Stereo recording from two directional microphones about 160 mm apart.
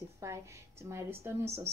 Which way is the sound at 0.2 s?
15° right (ahead or behind).